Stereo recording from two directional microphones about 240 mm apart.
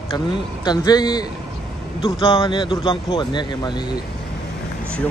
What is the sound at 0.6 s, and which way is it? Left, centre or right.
Speech, centre.